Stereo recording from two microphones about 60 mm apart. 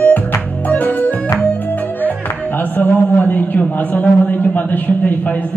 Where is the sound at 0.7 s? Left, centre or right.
Left.